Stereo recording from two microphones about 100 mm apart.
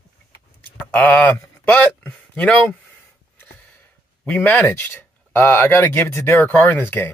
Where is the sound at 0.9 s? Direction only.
15° left (ahead or behind).